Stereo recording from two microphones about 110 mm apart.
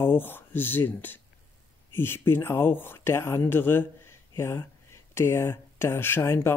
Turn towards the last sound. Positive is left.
turn(degrees=20)  # may be behind; listen again after turning